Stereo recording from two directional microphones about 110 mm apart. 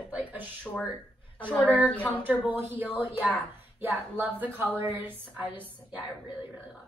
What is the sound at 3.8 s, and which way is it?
A woman's voice, 20° right (ahead or behind).